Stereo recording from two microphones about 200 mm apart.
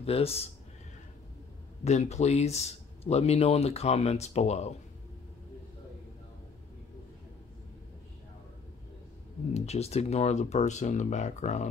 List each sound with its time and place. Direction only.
0.0 s speech: 30° left (ahead or behind)
1.9 s speech: 35° left (ahead or behind)
9.5 s speech: 30° left (ahead or behind)